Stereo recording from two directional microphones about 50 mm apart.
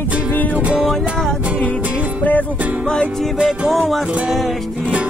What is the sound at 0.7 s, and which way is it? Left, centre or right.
Music, centre.